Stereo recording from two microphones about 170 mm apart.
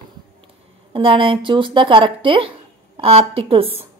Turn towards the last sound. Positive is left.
turn(degrees=-35)  # may be behind; listen again after turning